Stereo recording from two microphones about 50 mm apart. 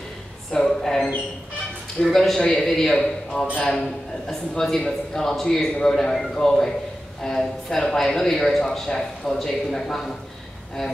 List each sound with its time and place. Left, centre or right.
0.5 s a sound: centre
2.1 s speech: centre
3.5 s a man's voice: centre
4.3 s speech: centre